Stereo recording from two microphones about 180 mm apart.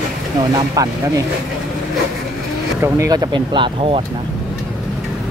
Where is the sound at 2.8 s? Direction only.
15° right (ahead or behind).